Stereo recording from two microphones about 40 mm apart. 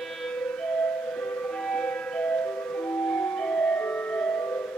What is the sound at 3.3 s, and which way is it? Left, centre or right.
Music, left.